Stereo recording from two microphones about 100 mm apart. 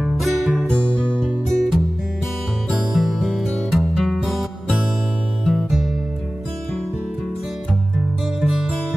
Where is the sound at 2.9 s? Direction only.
Centre (ahead or behind).